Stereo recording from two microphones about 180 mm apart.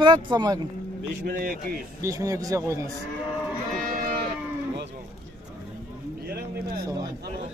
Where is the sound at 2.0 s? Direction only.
20° right (ahead or behind).